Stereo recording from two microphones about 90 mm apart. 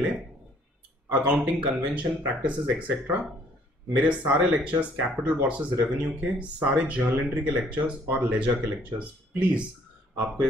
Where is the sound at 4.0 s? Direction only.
10° right (ahead or behind).